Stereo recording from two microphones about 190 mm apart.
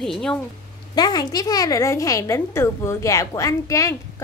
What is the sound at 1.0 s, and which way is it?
A child's voice, 20° left (ahead or behind).